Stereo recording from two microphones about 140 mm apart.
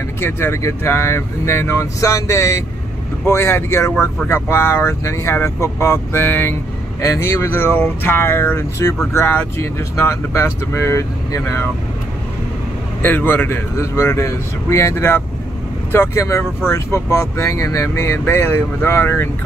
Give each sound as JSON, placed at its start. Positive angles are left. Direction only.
{"t": 0.2, "sound": "speech", "side_deg": 15}
{"t": 13.0, "sound": "speech", "side_deg": 15}